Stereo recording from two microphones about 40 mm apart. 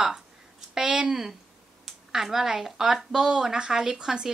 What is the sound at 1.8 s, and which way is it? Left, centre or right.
A woman's voice, centre.